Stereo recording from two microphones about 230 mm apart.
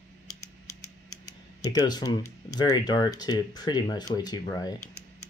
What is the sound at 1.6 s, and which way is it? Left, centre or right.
Speech, centre.